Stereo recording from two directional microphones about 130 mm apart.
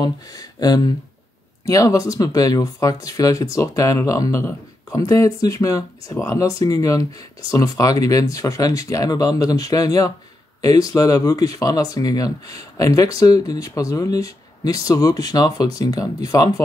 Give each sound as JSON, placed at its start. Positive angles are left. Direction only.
{"t": 0.0, "sound": "speech", "side_deg": 30}